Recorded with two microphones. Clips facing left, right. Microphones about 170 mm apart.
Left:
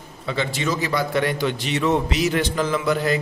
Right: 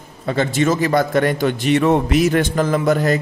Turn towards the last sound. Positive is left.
turn(degrees=-45)  # may be behind; listen again after turning